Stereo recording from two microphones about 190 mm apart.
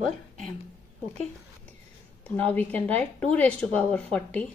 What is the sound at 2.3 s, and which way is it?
A woman's voice, 10° left (ahead or behind).